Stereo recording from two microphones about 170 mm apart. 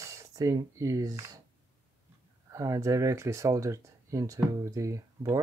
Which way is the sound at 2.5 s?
20° right (ahead or behind).